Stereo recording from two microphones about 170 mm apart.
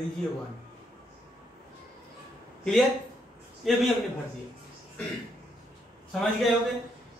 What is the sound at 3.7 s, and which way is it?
Speech, centre (ahead or behind).